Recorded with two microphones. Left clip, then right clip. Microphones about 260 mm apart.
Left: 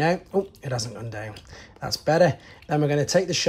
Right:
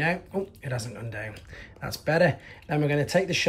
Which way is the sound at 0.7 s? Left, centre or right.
Centre.